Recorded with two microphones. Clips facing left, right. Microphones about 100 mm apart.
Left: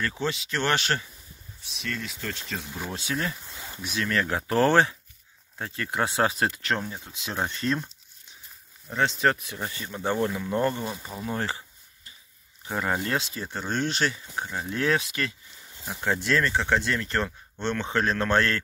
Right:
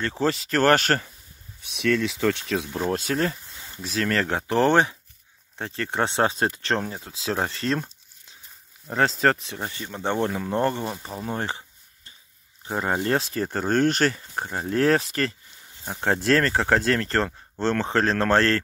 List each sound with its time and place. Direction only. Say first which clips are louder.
0.0 s speech: right 5 dB; 35° right (ahead or behind)
1.8 s speech: right 12 dB; 90° right
2.8 s speech: right 5 dB; 45° right (ahead or behind)
4.3 s speech: right 1 dB; 25° right (ahead or behind)
10.3 s speech: right 2 dB; 40° right (ahead or behind)